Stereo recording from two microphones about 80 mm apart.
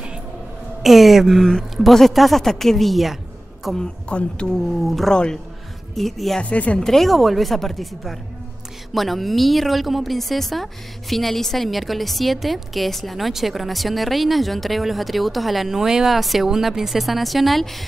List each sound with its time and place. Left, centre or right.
0.8 s a woman's voice: centre
3.8 s a woman's voice: centre
4.8 s a woman's voice: centre
6.4 s a woman's voice: centre
6.8 s a woman's voice: centre